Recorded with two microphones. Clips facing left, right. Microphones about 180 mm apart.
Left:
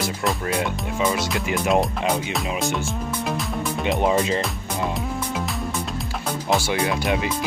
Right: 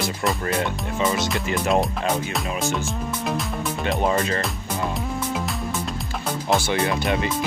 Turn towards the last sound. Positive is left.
turn(degrees=5)  # may be behind; listen again after turning